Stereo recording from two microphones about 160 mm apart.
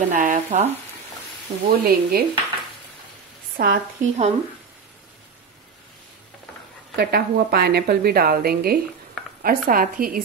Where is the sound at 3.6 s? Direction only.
65° right (ahead or behind).